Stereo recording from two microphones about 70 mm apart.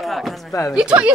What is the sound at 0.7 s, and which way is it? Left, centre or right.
Speech, centre.